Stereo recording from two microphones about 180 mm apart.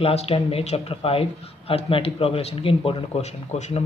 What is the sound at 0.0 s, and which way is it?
Speech, 35° left (ahead or behind).